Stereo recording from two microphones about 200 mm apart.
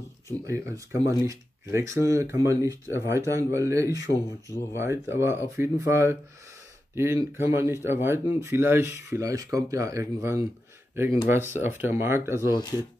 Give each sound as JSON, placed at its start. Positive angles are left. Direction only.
{"t": 0.5, "sound": "speech", "side_deg": -15}